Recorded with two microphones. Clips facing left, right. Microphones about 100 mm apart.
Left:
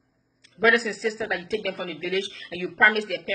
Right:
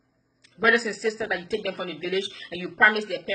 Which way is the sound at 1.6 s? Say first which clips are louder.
Even; 40° right (ahead or behind).